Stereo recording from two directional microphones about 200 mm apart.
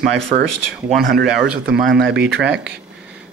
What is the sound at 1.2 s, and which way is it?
Speech, 5° right (ahead or behind).